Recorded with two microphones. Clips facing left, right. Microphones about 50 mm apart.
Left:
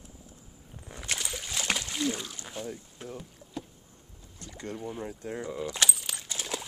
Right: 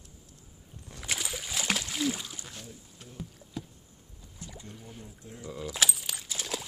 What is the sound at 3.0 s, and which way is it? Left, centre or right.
Speech, left.